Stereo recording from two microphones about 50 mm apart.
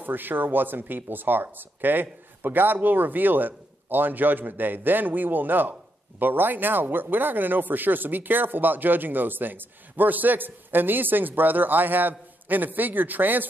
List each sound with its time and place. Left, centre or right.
0.0 s speech: right